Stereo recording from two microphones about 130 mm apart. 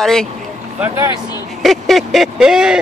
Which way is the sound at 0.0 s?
5° left (ahead or behind).